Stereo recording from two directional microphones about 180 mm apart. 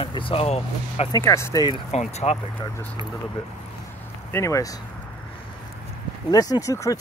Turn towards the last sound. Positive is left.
turn(degrees=15)  # may be behind; listen again after turning